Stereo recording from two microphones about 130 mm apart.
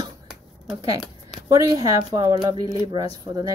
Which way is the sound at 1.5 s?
30° right (ahead or behind).